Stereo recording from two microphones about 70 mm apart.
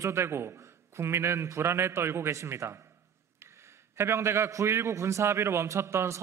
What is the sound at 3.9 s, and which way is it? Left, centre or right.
A man's voice, right.